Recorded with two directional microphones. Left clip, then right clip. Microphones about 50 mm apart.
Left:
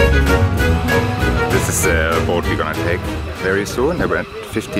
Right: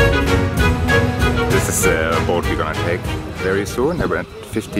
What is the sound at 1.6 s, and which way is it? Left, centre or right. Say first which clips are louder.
Speech: even; centre.